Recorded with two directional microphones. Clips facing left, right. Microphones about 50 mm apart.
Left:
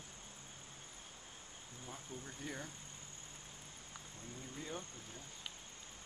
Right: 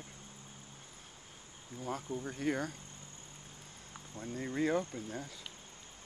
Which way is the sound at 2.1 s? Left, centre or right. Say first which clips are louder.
Right 10 dB; right.